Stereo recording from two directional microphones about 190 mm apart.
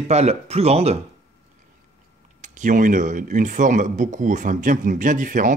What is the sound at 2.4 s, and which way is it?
Speech, 40° right (ahead or behind).